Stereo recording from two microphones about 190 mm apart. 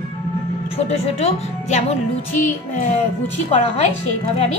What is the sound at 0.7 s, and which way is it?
Speech, 30° left (ahead or behind).